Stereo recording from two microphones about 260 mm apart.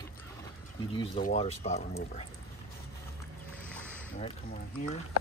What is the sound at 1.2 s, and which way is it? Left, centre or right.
Speech, left.